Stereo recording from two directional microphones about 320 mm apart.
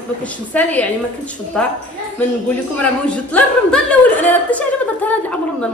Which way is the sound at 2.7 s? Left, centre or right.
Centre.